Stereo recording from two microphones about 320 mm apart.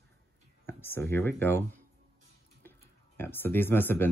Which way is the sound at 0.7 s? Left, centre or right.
Centre.